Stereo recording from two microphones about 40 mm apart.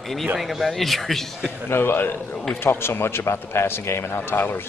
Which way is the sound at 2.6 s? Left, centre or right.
Left.